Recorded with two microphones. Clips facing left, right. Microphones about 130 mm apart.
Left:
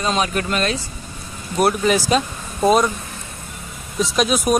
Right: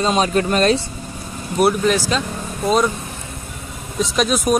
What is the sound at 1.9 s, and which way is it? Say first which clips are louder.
Speech: left 2 dB; 15° left (ahead or behind).